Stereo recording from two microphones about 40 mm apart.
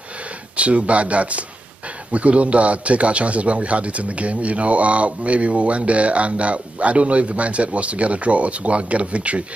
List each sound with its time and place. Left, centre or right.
0.6 s a man's voice: right